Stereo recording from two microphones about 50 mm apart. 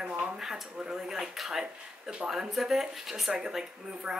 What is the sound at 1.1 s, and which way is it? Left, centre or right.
A woman's voice, centre.